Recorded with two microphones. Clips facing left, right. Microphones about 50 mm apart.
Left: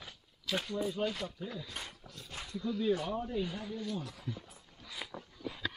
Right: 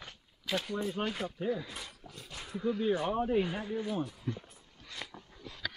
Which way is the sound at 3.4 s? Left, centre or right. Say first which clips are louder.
Right 4 dB; right.